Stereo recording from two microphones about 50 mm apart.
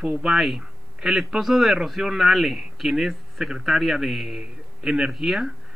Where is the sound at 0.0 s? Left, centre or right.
Centre.